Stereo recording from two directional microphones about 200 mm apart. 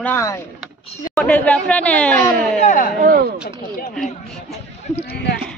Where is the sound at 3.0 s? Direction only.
45° right (ahead or behind).